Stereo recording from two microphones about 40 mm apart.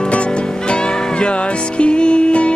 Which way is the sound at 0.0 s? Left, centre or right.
Left.